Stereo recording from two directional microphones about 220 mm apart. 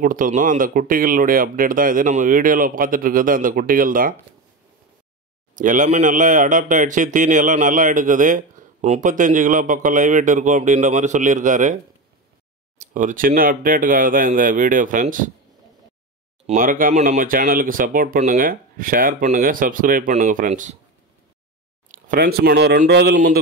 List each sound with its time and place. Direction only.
0.0 s a man's voice: 35° right (ahead or behind)
5.6 s a man's voice: 35° right (ahead or behind)
16.4 s a man's voice: 40° right (ahead or behind)
21.8 s speech: 40° right (ahead or behind)